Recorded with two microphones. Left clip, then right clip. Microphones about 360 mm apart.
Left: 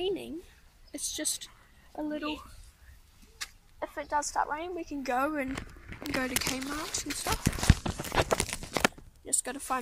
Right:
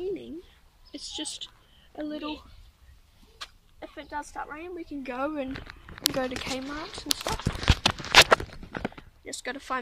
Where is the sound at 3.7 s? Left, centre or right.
Centre.